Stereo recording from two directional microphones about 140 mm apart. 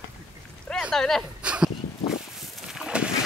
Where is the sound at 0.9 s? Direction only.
5° left (ahead or behind).